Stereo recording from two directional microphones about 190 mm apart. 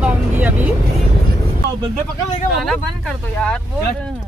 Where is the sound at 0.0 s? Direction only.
10° right (ahead or behind).